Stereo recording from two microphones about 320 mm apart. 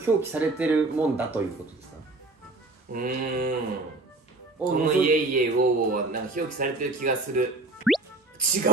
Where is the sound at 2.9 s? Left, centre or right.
Right.